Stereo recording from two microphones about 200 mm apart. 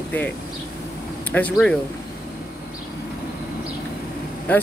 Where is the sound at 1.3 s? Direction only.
5° left (ahead or behind).